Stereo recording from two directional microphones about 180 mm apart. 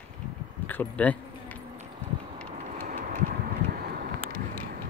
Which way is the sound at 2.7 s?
50° right (ahead or behind).